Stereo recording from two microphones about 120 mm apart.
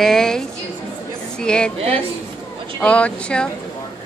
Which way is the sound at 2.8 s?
10° left (ahead or behind).